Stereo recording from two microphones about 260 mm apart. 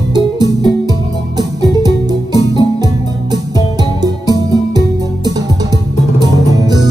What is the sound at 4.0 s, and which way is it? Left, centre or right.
Music, centre.